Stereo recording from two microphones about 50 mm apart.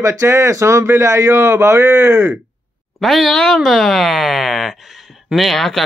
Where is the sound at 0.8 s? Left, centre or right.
Right.